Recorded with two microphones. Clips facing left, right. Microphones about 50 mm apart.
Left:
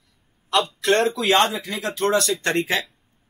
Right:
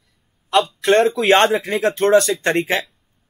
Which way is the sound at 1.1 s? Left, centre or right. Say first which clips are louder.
Right 5 dB; right.